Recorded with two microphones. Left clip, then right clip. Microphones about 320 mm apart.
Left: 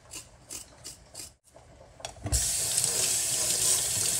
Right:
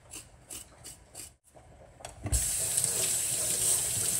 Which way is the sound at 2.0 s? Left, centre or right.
Centre.